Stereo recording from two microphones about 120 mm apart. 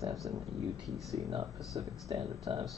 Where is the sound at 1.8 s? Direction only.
30° right (ahead or behind).